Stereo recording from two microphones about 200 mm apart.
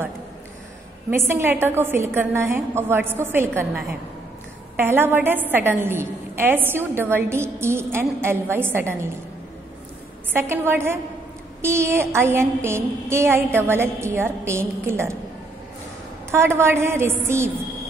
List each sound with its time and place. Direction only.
1.1 s a woman's voice: 10° right (ahead or behind)
10.3 s a woman's voice: 15° right (ahead or behind)
16.3 s a woman's voice: 10° right (ahead or behind)